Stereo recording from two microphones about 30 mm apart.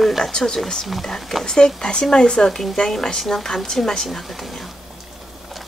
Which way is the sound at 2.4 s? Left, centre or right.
Centre.